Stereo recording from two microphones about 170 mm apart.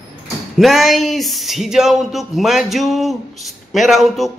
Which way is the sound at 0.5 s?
Centre (ahead or behind).